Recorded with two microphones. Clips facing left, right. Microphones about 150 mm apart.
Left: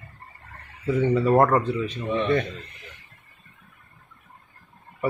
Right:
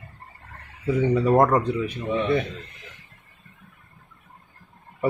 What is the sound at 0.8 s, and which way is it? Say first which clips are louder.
Speech: even; 15° right (ahead or behind).